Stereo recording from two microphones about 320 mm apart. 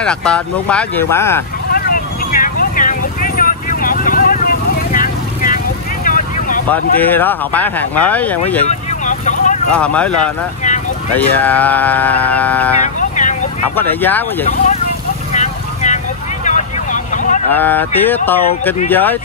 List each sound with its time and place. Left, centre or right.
0.0 s speech: centre
1.7 s vehicle: left
6.7 s speech: centre
8.6 s vehicle: left
9.7 s speech: centre
12.8 s vehicle: left
13.7 s speech: centre
15.3 s vehicle: left
17.5 s speech: centre